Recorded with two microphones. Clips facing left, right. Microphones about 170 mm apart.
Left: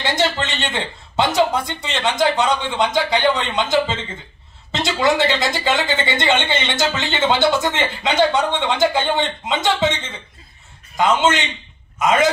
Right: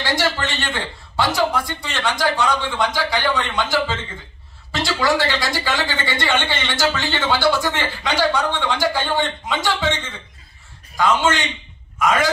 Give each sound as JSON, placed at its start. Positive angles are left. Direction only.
{"t": 0.0, "sound": "speech", "side_deg": 20}